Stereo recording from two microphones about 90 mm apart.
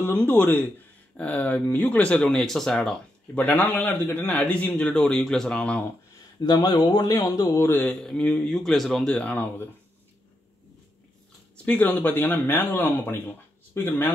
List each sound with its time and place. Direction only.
0.0 s a man's voice: 20° left (ahead or behind); by 3.0 s 5° left (ahead or behind)
3.3 s a man's voice: 15° left (ahead or behind)
6.4 s speech: 50° left (ahead or behind)
7.2 s speech: 40° left (ahead or behind)
7.8 s a man's voice: 5° left (ahead or behind)
9.1 s a man's voice: 15° left (ahead or behind)
11.5 s speech: 20° left (ahead or behind)